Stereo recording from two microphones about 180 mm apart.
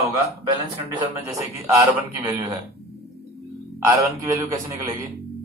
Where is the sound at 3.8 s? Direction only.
20° right (ahead or behind).